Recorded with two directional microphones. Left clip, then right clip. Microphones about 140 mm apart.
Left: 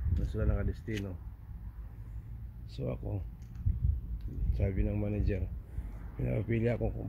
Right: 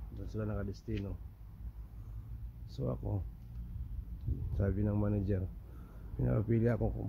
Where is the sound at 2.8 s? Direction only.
35° right (ahead or behind).